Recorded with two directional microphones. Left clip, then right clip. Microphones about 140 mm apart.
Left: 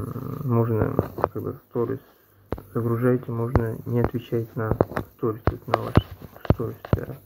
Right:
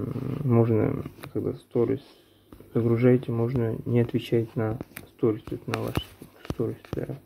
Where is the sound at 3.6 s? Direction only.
45° right (ahead or behind).